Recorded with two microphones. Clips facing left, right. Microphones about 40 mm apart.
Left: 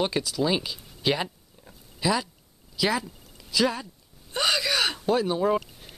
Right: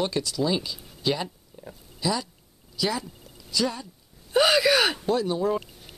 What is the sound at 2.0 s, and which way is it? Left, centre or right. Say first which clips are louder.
Speech: left 2 dB; left.